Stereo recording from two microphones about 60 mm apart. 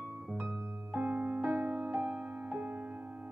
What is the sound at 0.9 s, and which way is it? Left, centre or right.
Music, right.